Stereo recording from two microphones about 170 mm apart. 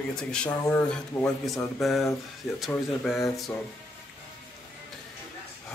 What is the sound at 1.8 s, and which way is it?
Speech, centre (ahead or behind).